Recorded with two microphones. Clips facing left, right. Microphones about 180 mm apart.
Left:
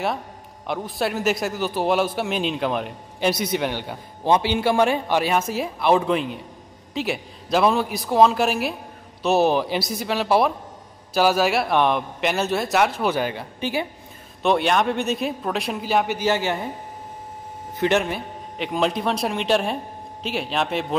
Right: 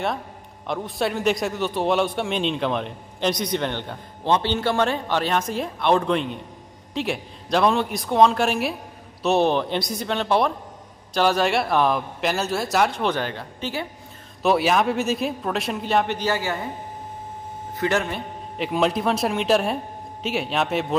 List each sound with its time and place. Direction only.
0.7 s a man's voice: centre (ahead or behind)
14.4 s a man's voice: 5° right (ahead or behind)
16.3 s a man's voice: 20° left (ahead or behind)
17.7 s a man's voice: 20° left (ahead or behind)
18.1 s a man's voice: centre (ahead or behind)